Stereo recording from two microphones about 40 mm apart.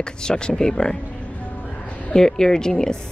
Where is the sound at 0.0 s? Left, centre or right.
Left.